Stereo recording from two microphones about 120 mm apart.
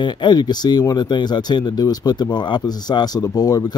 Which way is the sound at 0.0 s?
40° left (ahead or behind).